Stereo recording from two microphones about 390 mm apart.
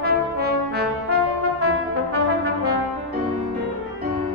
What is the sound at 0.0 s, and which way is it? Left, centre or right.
Brass instrument, right.